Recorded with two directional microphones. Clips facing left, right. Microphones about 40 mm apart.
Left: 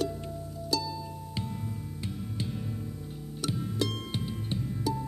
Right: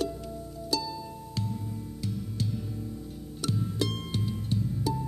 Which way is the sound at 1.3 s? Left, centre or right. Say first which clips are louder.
Right 2 dB; left.